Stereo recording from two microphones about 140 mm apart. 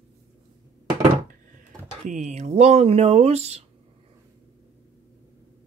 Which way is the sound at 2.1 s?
55° right (ahead or behind).